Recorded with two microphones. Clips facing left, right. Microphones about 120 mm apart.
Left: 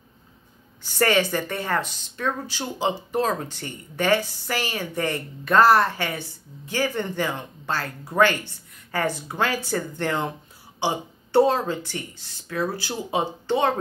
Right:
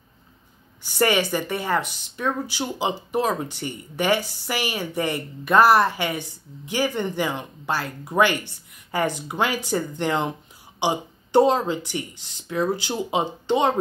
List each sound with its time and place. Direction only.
0.9 s speech: 15° right (ahead or behind)